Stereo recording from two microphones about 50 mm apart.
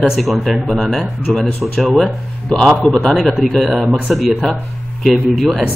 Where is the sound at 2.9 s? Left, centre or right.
Centre.